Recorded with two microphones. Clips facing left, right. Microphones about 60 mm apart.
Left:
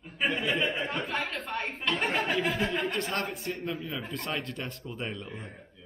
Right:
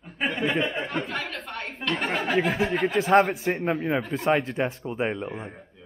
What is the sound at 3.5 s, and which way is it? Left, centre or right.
A man's voice, right.